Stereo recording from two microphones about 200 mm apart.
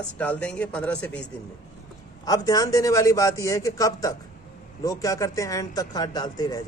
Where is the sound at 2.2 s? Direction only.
20° left (ahead or behind).